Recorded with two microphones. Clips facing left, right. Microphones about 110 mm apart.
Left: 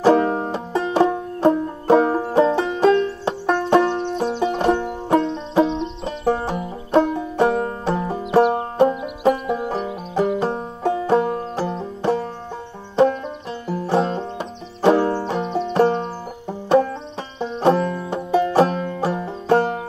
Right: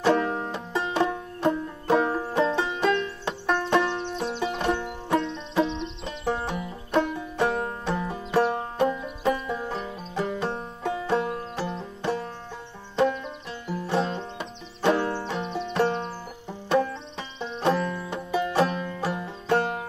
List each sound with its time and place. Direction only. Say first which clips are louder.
0.0 s music: left 7 dB; 35° left (ahead or behind)
2.3 s banjo: left 7 dB; 35° left (ahead or behind)
8.0 s music: left 8 dB; 25° left (ahead or behind)
9.2 s music: left 8 dB; 60° left (ahead or behind)
10.4 s banjo: left 7 dB; 35° left (ahead or behind)
13.7 s banjo: left 6 dB; 35° left (ahead or behind)
17.4 s banjo: left 7 dB; 40° left (ahead or behind)